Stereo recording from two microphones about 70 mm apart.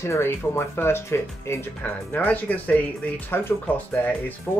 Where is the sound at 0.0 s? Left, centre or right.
Left.